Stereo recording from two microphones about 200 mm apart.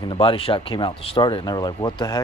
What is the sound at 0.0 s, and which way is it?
Speech, 25° left (ahead or behind).